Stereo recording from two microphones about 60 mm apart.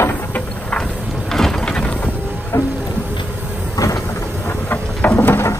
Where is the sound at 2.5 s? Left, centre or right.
Left.